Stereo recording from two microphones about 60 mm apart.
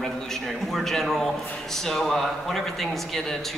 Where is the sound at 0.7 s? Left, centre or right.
Centre.